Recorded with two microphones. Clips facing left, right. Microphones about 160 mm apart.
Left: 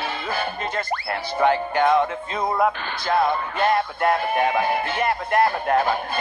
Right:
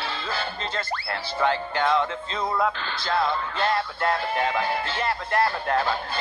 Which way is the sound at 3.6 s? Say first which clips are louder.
Left 5 dB; 15° left (ahead or behind).